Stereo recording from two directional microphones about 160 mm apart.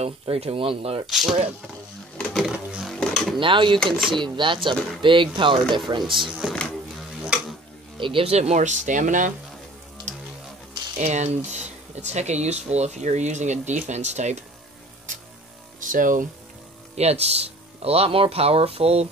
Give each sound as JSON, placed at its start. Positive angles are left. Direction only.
{"t": 0.0, "sound": "speech", "side_deg": -40}
{"t": 2.1, "sound": "a sound", "side_deg": 0}
{"t": 3.3, "sound": "speech", "side_deg": -30}
{"t": 3.9, "sound": "speech", "side_deg": 0}
{"t": 4.2, "sound": "speech", "side_deg": -30}
{"t": 6.3, "sound": "speech", "side_deg": 0}
{"t": 8.0, "sound": "speech", "side_deg": -35}
{"t": 11.0, "sound": "speech", "side_deg": -45}
{"t": 15.8, "sound": "speech", "side_deg": -55}
{"t": 16.9, "sound": "speech", "side_deg": -40}